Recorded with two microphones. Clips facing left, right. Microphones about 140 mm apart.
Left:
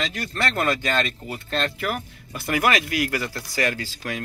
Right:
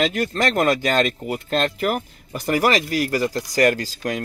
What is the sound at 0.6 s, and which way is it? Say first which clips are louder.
Speech: right 5 dB; 40° right (ahead or behind).